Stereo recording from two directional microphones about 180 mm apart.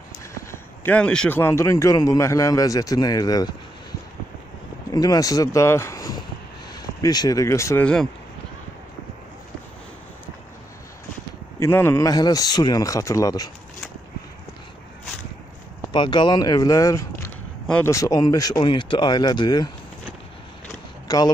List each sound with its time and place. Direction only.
0.5 s a man's voice: 10° left (ahead or behind)
4.9 s speech: 20° left (ahead or behind); by 8.1 s 5° left (ahead or behind)
11.6 s speech: 15° left (ahead or behind)
15.9 s speech: 25° left (ahead or behind)
17.6 s speech: 5° left (ahead or behind)
17.9 s speech: 20° left (ahead or behind)
21.1 s speech: 20° left (ahead or behind)